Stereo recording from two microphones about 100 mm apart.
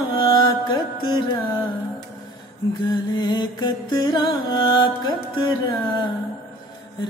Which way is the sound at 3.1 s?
50° left (ahead or behind).